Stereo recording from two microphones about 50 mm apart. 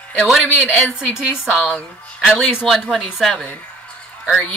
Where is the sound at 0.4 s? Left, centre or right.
Left.